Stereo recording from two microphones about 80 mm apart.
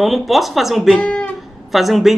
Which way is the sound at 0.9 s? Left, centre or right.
Centre.